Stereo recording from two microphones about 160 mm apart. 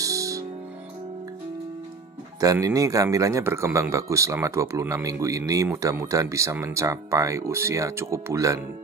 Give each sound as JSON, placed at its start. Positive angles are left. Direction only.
{"t": 0.0, "sound": "music", "side_deg": -20}
{"t": 2.4, "sound": "speech", "side_deg": -20}